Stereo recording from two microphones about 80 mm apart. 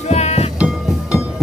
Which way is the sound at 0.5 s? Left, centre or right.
Centre.